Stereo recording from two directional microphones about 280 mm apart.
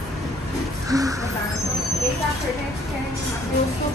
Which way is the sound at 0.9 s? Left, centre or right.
Centre.